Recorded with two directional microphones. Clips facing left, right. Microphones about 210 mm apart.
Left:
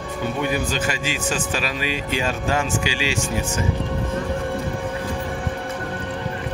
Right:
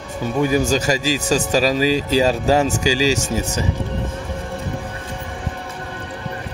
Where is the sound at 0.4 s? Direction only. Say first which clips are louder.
Right 8 dB; 40° right (ahead or behind).